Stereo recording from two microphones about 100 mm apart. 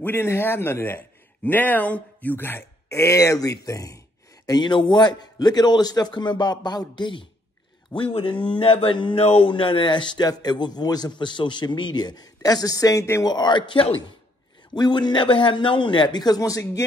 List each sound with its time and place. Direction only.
0.0 s a man's voice: 25° left (ahead or behind)
4.5 s a man's voice: 50° left (ahead or behind)
8.0 s speech: 65° left (ahead or behind)
9.2 s speech: 90° left
9.5 s a man's voice: 55° left (ahead or behind); by 13.2 s 30° left (ahead or behind)
13.2 s a man's voice: 45° left (ahead or behind)